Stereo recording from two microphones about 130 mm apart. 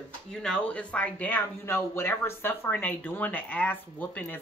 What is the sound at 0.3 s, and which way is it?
Speech, 5° left (ahead or behind).